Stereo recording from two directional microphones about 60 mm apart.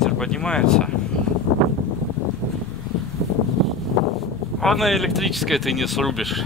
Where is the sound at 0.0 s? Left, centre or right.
Centre.